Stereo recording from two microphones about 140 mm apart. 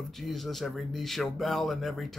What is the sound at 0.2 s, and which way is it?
Speech, centre (ahead or behind).